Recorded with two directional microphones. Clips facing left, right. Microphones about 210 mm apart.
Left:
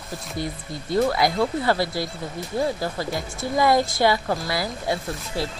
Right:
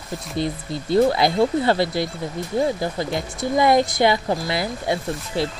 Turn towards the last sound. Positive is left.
turn(degrees=-20)  # may be behind; listen again after turning